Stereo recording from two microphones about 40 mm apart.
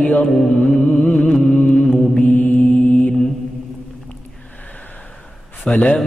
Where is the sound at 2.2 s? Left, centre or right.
Left.